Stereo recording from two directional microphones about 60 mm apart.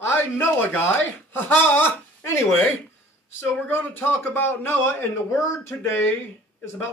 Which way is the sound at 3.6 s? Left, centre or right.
Left.